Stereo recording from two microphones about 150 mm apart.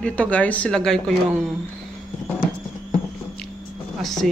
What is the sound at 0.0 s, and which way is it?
Speech, 10° left (ahead or behind).